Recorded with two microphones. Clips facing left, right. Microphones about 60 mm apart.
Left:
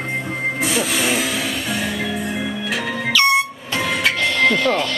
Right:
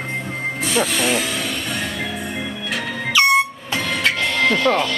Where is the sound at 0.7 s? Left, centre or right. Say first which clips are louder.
Right 4 dB; centre.